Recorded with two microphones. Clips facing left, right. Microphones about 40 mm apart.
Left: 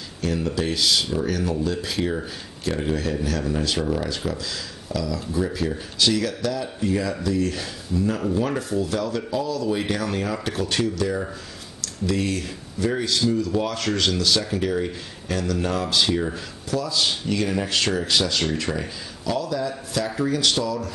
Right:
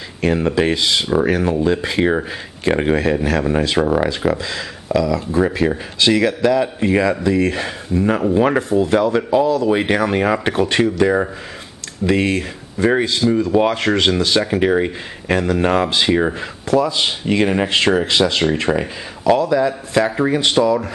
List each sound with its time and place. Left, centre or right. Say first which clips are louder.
0.2 s speech: right 8 dB; right